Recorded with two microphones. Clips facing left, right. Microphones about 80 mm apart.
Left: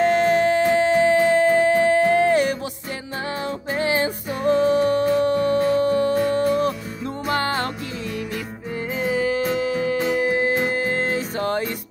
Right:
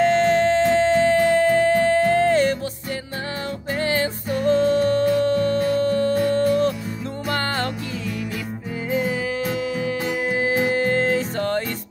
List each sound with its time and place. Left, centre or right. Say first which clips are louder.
0.0 s music: even; centre
3.7 s music: left 1 dB; centre
8.9 s music: right 1 dB; centre
9.6 s music: left 2 dB; left
9.9 s music: left 3 dB; centre